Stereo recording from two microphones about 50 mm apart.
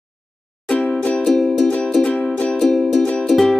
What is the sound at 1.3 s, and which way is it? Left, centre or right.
Music, centre.